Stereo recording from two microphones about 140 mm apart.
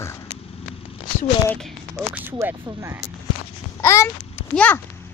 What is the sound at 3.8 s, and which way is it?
Babbling, 20° left (ahead or behind).